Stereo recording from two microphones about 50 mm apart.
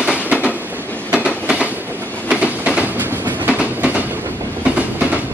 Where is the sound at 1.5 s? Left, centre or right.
Right.